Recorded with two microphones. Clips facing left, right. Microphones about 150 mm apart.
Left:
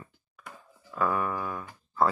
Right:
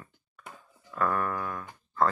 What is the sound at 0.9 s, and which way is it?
Music, 5° left (ahead or behind).